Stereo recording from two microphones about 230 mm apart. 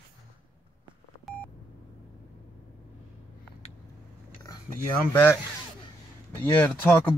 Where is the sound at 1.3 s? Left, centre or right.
Centre.